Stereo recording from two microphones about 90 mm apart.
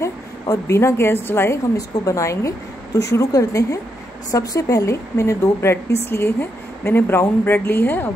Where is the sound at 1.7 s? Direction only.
40° left (ahead or behind).